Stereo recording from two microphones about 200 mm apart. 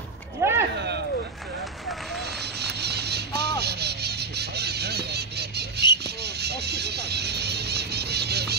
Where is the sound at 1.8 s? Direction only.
Centre (ahead or behind).